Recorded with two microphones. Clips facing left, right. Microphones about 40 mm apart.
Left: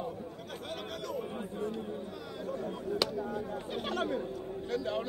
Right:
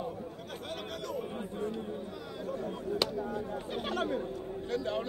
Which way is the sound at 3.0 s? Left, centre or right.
Right.